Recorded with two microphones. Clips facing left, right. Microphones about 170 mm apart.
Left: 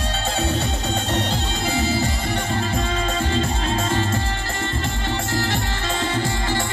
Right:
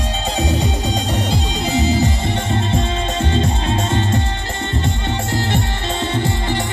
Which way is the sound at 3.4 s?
20° right (ahead or behind).